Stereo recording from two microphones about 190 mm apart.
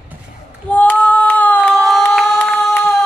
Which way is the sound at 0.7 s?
10° left (ahead or behind).